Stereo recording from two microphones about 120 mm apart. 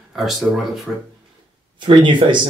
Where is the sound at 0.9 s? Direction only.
5° left (ahead or behind).